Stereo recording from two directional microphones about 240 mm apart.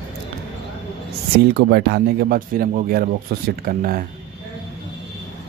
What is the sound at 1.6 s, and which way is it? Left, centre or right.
Speech, right.